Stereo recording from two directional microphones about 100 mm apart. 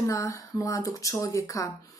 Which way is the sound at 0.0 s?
30° left (ahead or behind).